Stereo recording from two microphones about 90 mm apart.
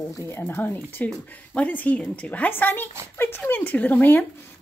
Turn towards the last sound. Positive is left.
turn(degrees=20)  # may be behind; listen again after turning